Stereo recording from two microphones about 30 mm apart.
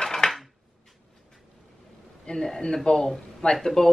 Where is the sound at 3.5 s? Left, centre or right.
Centre.